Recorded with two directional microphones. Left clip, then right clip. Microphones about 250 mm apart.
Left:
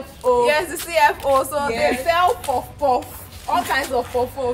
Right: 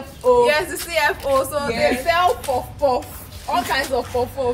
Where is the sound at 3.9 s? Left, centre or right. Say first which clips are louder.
Even; centre.